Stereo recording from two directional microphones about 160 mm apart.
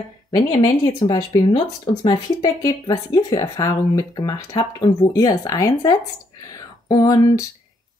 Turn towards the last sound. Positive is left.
turn(degrees=20)  # may be behind; listen again after turning